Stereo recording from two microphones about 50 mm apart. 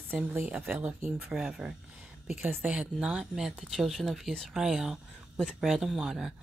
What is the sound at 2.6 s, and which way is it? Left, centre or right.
Speech, right.